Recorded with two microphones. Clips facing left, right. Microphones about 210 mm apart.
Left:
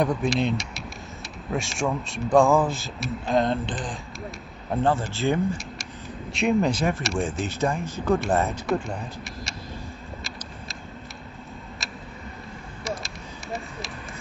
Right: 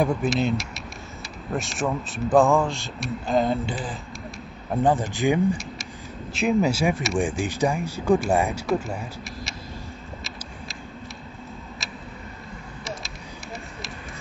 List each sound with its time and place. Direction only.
0.0 s speech: 5° right (ahead or behind)
4.8 s speech: 15° right (ahead or behind)
6.3 s speech: centre (ahead or behind)
8.6 s speech: centre (ahead or behind)
11.8 s tick-tock: centre (ahead or behind)
12.8 s a sound: centre (ahead or behind)